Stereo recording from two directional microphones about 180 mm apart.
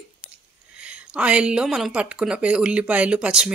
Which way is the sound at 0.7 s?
5° right (ahead or behind).